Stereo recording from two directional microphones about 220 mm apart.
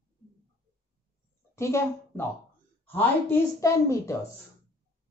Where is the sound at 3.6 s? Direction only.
15° left (ahead or behind).